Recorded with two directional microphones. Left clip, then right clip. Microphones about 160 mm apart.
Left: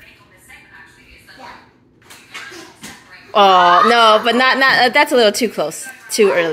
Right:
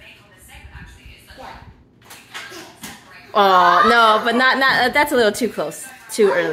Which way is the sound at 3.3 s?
10° left (ahead or behind).